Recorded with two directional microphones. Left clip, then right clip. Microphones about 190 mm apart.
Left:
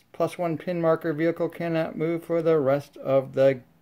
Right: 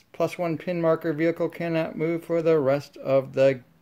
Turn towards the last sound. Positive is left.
turn(degrees=0)  # may be behind; listen again after turning